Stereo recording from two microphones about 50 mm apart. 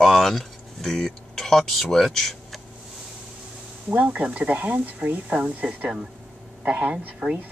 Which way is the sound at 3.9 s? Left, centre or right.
Right.